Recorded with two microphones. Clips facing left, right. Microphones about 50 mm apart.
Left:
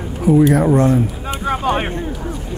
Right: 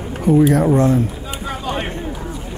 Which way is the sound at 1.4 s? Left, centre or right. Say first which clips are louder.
Left 6 dB; left.